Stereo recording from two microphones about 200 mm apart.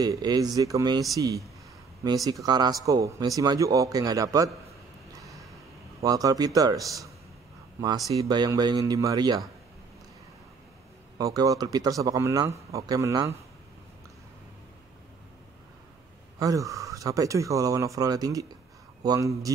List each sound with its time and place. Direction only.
0.0 s speech: 20° right (ahead or behind)
5.1 s a sound: 15° right (ahead or behind)
6.0 s speech: 20° right (ahead or behind)
8.1 s speech: 20° right (ahead or behind)
11.1 s speech: 15° right (ahead or behind)
16.3 s speech: 15° right (ahead or behind)